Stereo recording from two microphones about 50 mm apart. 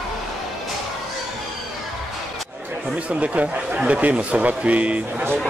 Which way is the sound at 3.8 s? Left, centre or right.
Right.